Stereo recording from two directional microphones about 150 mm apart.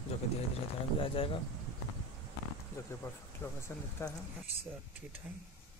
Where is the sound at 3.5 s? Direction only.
15° left (ahead or behind).